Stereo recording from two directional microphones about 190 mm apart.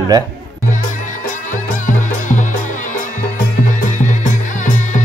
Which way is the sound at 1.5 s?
40° left (ahead or behind).